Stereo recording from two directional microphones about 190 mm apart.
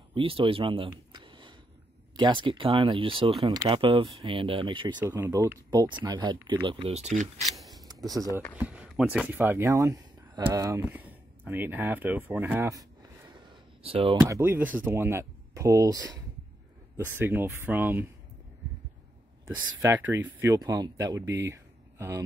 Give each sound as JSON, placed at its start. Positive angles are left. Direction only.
{"t": 0.1, "sound": "speech", "side_deg": -30}
{"t": 7.4, "sound": "a sound", "side_deg": 0}
{"t": 7.8, "sound": "a sound", "side_deg": -20}
{"t": 8.5, "sound": "speech", "side_deg": -5}
{"t": 13.8, "sound": "speech", "side_deg": -30}
{"t": 14.2, "sound": "speech", "side_deg": -10}
{"t": 19.4, "sound": "speech", "side_deg": -15}